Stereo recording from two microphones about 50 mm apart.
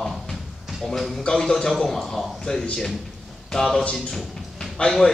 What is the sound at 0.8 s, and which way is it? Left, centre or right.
A man's voice, centre.